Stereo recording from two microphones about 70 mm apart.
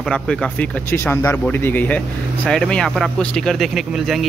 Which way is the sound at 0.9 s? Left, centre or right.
Left.